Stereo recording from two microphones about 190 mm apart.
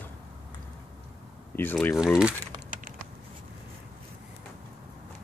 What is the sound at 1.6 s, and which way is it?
Speech, 10° left (ahead or behind).